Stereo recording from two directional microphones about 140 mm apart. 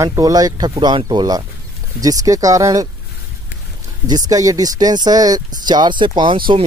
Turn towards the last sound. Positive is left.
turn(degrees=-35)  # may be behind; listen again after turning